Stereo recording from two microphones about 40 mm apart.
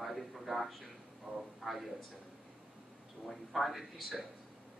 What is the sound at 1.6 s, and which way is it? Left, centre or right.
Speech, centre.